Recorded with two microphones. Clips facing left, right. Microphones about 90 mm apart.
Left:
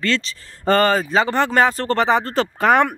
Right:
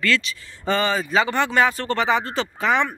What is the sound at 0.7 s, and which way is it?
Speech, 50° left (ahead or behind).